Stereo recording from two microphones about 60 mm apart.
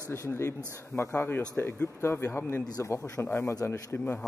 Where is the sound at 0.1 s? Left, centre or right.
Left.